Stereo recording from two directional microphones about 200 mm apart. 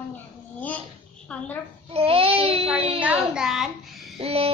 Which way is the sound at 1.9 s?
30° right (ahead or behind).